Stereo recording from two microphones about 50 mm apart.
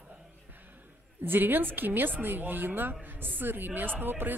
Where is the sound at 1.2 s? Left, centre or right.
Right.